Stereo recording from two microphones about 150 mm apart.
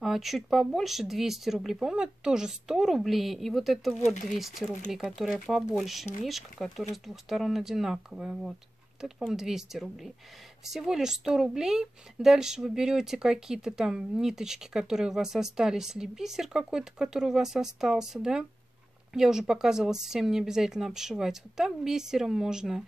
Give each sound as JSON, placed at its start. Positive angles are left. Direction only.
{"t": 0.0, "sound": "a woman's voice", "side_deg": 0}
{"t": 4.0, "sound": "speech", "side_deg": 55}
{"t": 4.4, "sound": "a woman's voice", "side_deg": 0}